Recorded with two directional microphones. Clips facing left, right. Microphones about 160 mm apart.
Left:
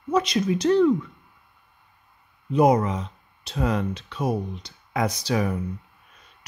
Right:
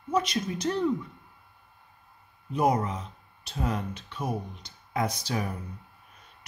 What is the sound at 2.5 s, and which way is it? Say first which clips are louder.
Speech: left 7 dB; 90° left.